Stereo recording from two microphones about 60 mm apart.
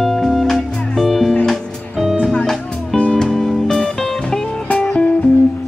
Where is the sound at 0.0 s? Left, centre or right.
Centre.